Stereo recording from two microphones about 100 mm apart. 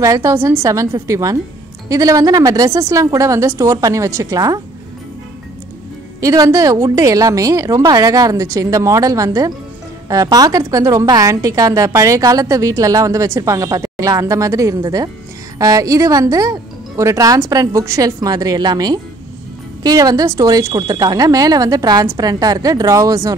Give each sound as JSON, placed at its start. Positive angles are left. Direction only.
{"t": 0.0, "sound": "a woman's voice", "side_deg": -30}
{"t": 6.2, "sound": "a woman's voice", "side_deg": -35}